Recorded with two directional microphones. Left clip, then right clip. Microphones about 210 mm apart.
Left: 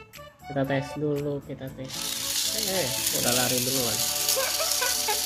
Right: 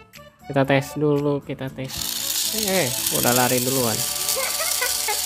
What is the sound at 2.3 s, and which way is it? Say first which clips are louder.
Snake: right 3 dB; 20° right (ahead or behind).